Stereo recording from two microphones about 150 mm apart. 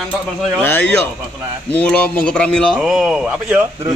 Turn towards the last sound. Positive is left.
turn(degrees=-5)  # may be behind; listen again after turning